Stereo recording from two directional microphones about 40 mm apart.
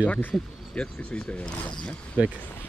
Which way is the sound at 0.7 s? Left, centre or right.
Left.